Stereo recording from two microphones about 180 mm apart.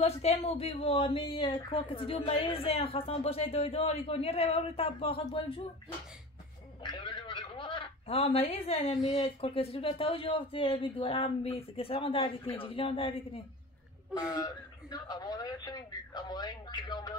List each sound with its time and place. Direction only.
0.0 s speech: 35° left (ahead or behind)